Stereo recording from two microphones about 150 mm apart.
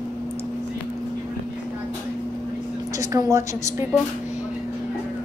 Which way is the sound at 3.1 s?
20° right (ahead or behind).